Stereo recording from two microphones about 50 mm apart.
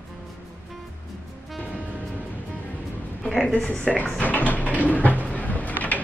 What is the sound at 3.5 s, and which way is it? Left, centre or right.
Speech, left.